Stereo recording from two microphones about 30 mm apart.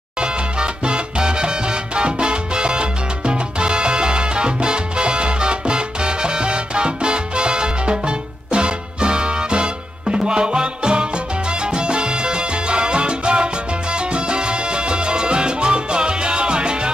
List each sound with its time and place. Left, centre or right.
0.2 s salsa music: right